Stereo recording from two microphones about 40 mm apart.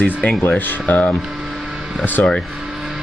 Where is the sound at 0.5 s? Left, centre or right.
Left.